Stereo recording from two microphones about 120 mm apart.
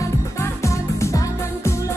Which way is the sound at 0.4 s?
25° left (ahead or behind).